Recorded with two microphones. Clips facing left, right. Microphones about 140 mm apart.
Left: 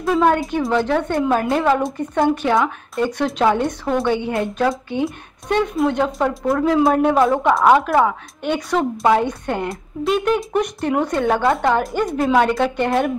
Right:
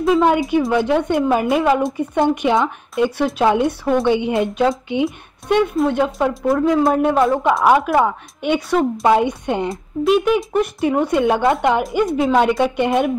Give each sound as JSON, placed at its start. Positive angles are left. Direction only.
{"t": 0.7, "sound": "speech", "side_deg": -15}
{"t": 3.1, "sound": "speech", "side_deg": -5}
{"t": 5.0, "sound": "speech", "side_deg": -5}
{"t": 9.7, "sound": "speech", "side_deg": 0}
{"t": 11.8, "sound": "speech", "side_deg": -5}